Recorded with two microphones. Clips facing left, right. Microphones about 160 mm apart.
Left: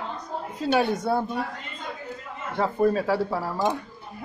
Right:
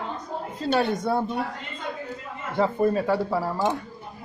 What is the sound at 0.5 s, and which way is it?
Speech, 5° left (ahead or behind).